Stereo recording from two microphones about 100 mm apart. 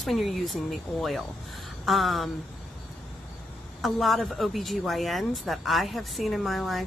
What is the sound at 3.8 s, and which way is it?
Speech, centre (ahead or behind).